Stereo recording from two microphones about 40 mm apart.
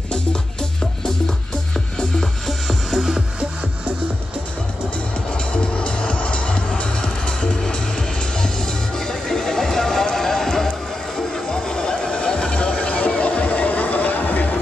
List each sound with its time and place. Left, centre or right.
2.0 s music: centre
5.5 s music: left
8.9 s music: centre; by 14.5 s left